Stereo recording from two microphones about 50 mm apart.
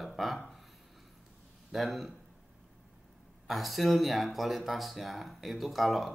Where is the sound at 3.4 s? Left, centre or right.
Centre.